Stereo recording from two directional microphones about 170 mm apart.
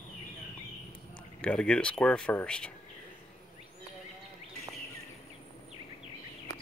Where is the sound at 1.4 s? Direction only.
5° left (ahead or behind).